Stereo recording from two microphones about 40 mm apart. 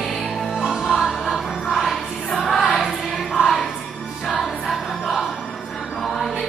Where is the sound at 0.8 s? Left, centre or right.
Centre.